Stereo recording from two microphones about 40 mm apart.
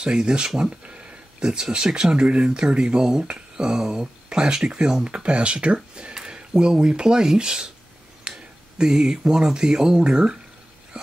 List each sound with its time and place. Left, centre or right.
0.0 s speech: right
6.1 s speech: centre